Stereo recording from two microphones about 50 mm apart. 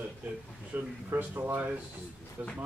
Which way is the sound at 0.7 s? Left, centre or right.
Right.